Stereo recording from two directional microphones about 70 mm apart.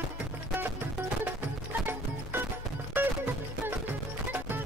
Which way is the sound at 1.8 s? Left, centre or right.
Right.